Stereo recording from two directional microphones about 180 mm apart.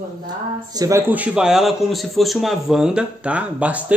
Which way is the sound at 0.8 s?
15° right (ahead or behind).